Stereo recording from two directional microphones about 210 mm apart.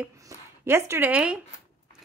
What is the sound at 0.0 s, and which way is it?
Speech, 15° right (ahead or behind).